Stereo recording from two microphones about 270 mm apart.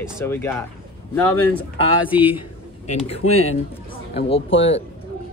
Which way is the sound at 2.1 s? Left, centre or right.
Centre.